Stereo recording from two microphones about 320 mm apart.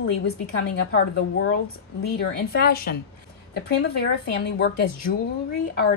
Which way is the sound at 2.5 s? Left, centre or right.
Left.